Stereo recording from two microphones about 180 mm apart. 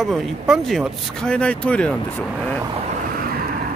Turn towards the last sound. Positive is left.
turn(degrees=-50)  # may be behind; listen again after turning